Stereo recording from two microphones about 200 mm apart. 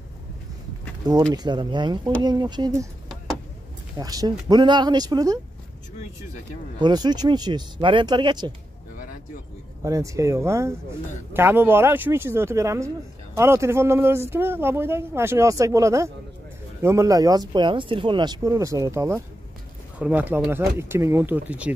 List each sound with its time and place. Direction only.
1.3 s speech: 20° right (ahead or behind)
4.0 s speech: 20° right (ahead or behind)
6.8 s speech: 20° right (ahead or behind)
9.8 s speech: 15° right (ahead or behind)